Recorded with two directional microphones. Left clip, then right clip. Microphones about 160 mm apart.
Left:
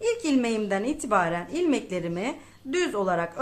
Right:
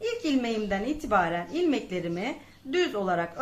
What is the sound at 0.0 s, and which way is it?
Speech, 35° left (ahead or behind).